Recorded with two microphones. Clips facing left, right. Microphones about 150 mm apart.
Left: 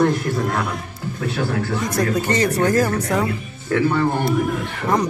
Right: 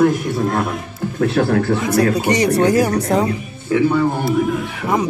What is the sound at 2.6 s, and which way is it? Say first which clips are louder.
A man's voice: right 3 dB; 15° right (ahead or behind).